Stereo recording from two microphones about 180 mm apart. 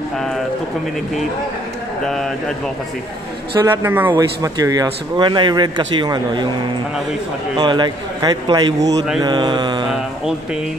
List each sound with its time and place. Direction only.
2.0 s speech: centre (ahead or behind)
3.8 s a man's voice: 10° right (ahead or behind)
7.5 s speech: 25° right (ahead or behind)